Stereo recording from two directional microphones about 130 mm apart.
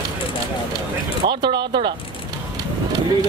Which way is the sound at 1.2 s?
35° right (ahead or behind).